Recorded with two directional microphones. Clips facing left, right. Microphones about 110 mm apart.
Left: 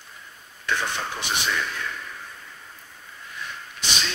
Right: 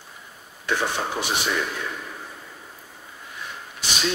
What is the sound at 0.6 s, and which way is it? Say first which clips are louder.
Speech: right 3 dB; 10° right (ahead or behind).